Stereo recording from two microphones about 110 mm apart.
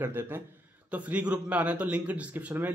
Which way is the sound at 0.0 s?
20° right (ahead or behind).